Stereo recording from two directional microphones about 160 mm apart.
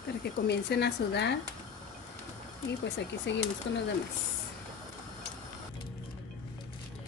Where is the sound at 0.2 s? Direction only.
90° left.